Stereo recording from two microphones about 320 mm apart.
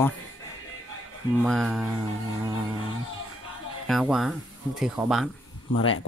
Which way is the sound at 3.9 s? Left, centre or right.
Centre.